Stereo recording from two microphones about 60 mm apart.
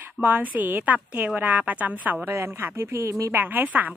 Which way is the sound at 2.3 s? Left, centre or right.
Right.